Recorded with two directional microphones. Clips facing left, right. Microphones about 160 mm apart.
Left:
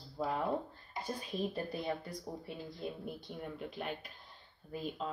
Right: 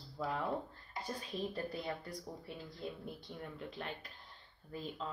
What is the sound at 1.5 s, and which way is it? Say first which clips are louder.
Speech: left 3 dB; 20° left (ahead or behind).